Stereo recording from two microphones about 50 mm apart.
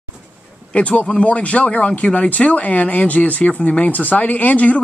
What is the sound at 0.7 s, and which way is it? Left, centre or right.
Speech, left.